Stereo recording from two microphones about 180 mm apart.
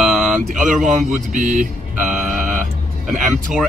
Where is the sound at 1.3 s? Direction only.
45° right (ahead or behind).